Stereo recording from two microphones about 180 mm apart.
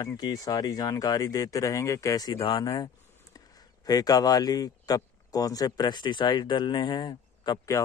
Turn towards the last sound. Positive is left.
turn(degrees=20)  # may be behind; listen again after turning